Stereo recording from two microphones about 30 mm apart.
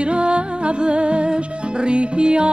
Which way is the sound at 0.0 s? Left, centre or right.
Right.